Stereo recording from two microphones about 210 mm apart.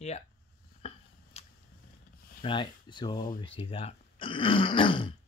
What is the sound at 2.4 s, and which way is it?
Speech, 20° left (ahead or behind).